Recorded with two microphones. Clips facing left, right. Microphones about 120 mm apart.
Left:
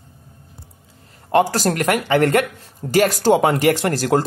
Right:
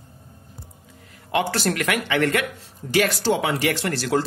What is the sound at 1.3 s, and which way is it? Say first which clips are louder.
Speech: left 6 dB; 40° left (ahead or behind).